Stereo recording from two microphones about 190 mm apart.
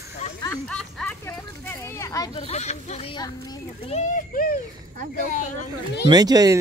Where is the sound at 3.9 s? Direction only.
45° left (ahead or behind).